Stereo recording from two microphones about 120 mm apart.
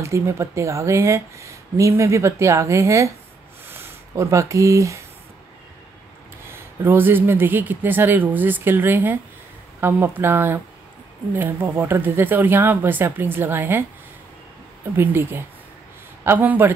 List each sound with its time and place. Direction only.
0.0 s speech: 25° right (ahead or behind)
6.5 s speech: 20° right (ahead or behind)
15.0 s speech: 20° right (ahead or behind)